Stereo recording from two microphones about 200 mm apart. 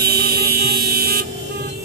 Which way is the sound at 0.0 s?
50° right (ahead or behind).